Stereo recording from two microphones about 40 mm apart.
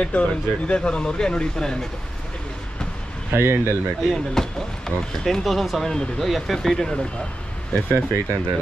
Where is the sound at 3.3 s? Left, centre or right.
Right.